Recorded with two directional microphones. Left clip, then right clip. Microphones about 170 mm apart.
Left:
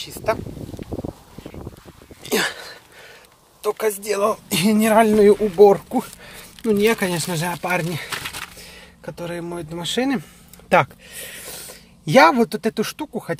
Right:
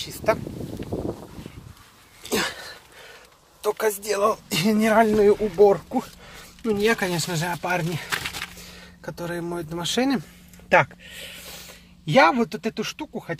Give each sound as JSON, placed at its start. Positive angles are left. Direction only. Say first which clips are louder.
{"t": 0.0, "sound": "speech", "louder": "even", "side_deg": 10}
{"t": 2.2, "sound": "cough", "louder": "left 4 dB", "side_deg": 50}
{"t": 3.6, "sound": "speech", "louder": "left 2 dB", "side_deg": 10}
{"t": 9.0, "sound": "speech", "louder": "left 1 dB", "side_deg": 5}
{"t": 11.1, "sound": "speech", "louder": "left 4 dB", "side_deg": 45}